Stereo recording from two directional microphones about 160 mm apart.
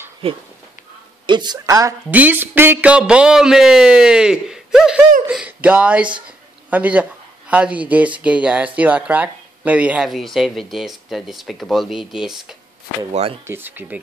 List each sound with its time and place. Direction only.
0.2 s speech: 35° right (ahead or behind); by 2.0 s 20° right (ahead or behind)
2.0 s speech: 10° right (ahead or behind)
13.5 s speech: 15° right (ahead or behind)